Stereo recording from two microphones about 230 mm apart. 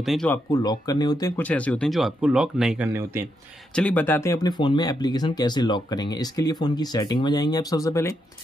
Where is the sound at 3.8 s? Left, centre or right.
Centre.